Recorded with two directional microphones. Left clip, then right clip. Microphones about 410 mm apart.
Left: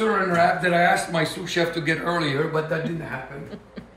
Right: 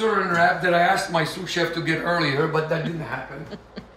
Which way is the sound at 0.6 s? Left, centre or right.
Centre.